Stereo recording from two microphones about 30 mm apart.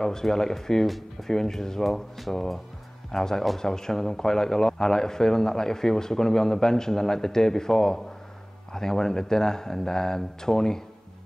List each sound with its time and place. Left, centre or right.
0.0 s a man's voice: centre
0.8 s speech: centre
1.3 s a man's voice: centre